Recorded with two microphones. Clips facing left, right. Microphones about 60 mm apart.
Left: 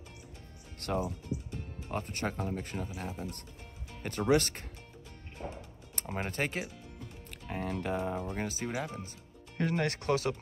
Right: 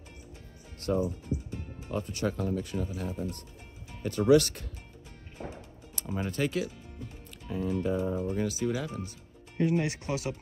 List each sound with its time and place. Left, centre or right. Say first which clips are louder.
0.7 s speech: right 4 dB; left
1.9 s speech: right 4 dB; left
5.9 s speech: right 3 dB; left
7.2 s speech: right 4 dB; left
8.4 s speech: right 5 dB; left
9.6 s speech: right 3 dB; left